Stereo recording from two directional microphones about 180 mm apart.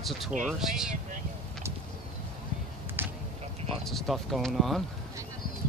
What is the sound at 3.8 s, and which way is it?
Speech, centre (ahead or behind).